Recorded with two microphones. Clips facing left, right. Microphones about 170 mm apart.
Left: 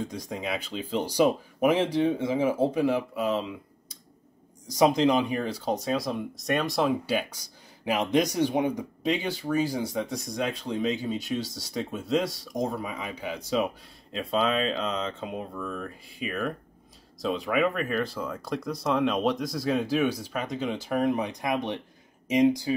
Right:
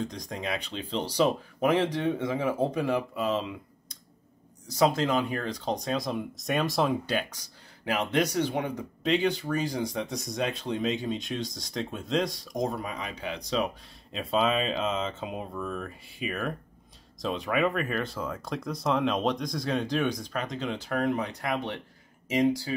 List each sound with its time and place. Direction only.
0.0 s speech: 10° left (ahead or behind)
4.6 s speech: 15° left (ahead or behind)